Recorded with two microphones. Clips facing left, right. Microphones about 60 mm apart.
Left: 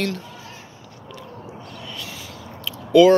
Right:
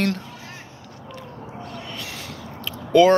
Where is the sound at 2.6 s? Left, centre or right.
Right.